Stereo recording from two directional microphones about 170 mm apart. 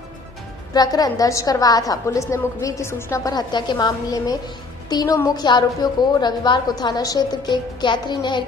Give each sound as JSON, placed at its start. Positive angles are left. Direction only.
{"t": 0.7, "sound": "a woman's voice", "side_deg": 20}